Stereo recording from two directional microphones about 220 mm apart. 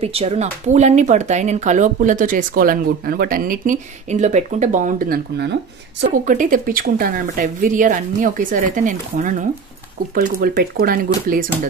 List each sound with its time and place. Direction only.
0.0 s speech: 25° right (ahead or behind); by 11.1 s 40° right (ahead or behind)